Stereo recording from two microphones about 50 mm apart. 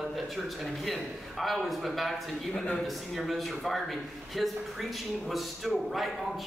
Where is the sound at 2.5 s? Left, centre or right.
Centre.